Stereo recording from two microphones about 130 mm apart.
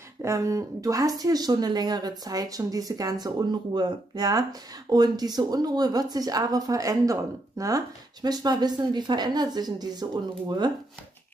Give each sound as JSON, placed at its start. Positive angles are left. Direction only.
{"t": 0.2, "sound": "speech", "side_deg": -25}